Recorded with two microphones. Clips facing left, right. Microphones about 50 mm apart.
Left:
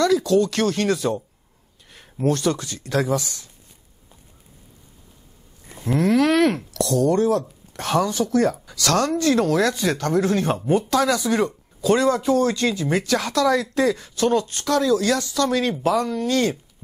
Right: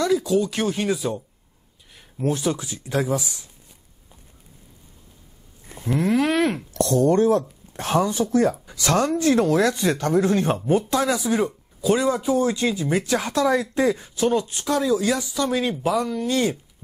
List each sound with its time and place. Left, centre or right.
0.0 s speech: centre
2.2 s speech: centre
5.9 s a sound: centre
6.7 s speech: right